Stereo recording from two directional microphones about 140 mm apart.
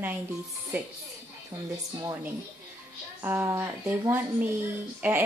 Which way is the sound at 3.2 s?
15° right (ahead or behind).